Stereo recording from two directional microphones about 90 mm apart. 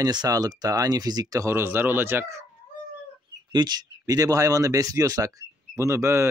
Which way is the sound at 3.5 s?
50° right (ahead or behind).